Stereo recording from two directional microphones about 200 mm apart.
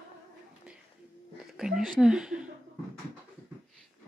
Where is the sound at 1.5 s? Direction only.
5° right (ahead or behind).